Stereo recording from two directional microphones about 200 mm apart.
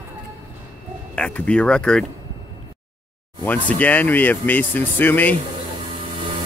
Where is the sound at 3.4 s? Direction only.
5° left (ahead or behind).